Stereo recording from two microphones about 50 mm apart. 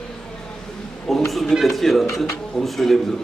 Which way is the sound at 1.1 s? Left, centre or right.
Centre.